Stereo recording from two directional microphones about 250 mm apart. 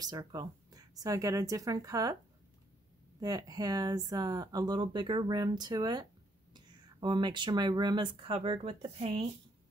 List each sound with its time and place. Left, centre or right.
0.0 s speech: centre
3.2 s speech: centre